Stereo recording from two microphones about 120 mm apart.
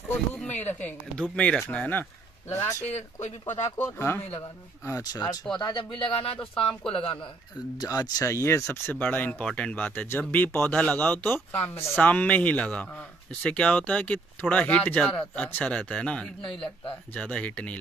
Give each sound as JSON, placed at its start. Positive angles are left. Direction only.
{"t": 0.5, "sound": "speech", "side_deg": 15}
{"t": 2.5, "sound": "speech", "side_deg": 25}
{"t": 2.9, "sound": "speech", "side_deg": 70}
{"t": 3.7, "sound": "speech", "side_deg": 20}
{"t": 7.7, "sound": "speech", "side_deg": 35}